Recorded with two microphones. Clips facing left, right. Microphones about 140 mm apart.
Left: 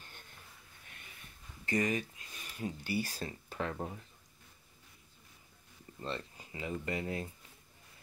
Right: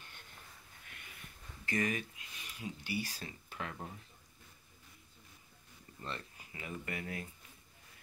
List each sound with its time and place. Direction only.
1.7 s speech: 25° left (ahead or behind)
5.9 s speech: 25° left (ahead or behind)